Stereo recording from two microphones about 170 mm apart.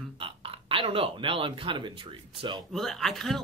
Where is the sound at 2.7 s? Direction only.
Centre (ahead or behind).